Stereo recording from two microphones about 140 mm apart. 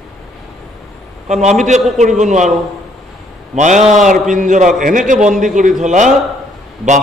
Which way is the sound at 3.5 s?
60° right (ahead or behind).